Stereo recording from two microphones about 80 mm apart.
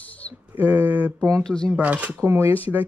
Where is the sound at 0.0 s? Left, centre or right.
Centre.